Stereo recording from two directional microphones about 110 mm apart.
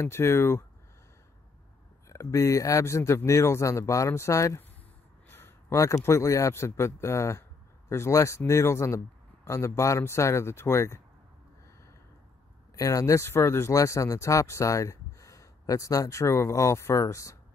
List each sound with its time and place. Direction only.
0.0 s speech: 25° left (ahead or behind)
2.0 s speech: 30° left (ahead or behind)
5.3 s a sound: 25° left (ahead or behind)
6.0 s speech: 25° left (ahead or behind)
12.7 s speech: 30° left (ahead or behind)